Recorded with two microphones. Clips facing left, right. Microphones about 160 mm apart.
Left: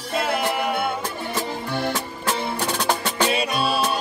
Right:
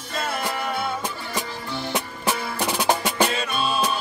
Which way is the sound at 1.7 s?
55° left (ahead or behind).